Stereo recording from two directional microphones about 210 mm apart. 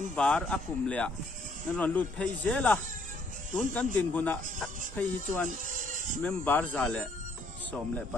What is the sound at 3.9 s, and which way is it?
Speech, 10° left (ahead or behind).